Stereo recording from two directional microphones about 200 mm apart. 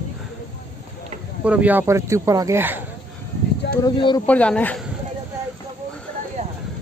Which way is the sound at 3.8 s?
20° left (ahead or behind).